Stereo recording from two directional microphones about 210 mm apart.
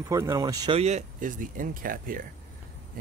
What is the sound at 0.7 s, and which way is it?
Speech, 30° right (ahead or behind).